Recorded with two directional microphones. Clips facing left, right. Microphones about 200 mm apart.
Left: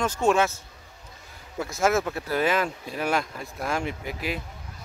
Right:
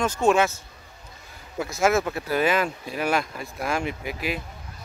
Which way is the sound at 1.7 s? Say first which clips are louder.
Right 2 dB; 10° right (ahead or behind).